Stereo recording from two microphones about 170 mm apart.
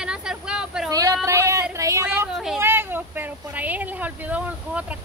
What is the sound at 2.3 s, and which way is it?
Speech, centre (ahead or behind).